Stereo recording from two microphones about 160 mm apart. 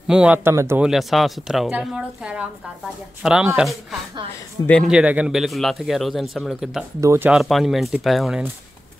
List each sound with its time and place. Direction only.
0.1 s speech: 5° right (ahead or behind)
0.8 s a man's voice: centre (ahead or behind)
7.0 s speech: 20° right (ahead or behind)
7.2 s a man's voice: centre (ahead or behind)